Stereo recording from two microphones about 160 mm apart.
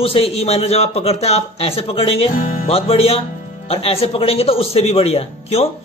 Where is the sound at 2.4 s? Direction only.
55° left (ahead or behind).